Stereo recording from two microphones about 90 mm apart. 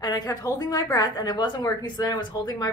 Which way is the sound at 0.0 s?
45° left (ahead or behind).